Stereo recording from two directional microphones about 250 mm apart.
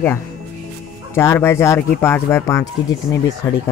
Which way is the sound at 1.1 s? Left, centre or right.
Centre.